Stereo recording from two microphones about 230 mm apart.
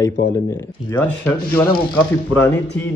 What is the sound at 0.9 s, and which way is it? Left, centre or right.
Speech, centre.